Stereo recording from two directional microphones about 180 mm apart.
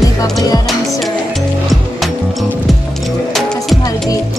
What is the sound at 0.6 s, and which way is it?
Music, centre (ahead or behind).